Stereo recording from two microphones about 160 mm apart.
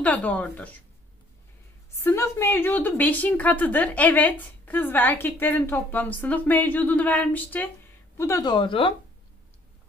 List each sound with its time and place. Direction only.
0.0 s a woman's voice: 10° left (ahead or behind)
2.0 s a woman's voice: 15° left (ahead or behind); by 8.9 s 30° left (ahead or behind)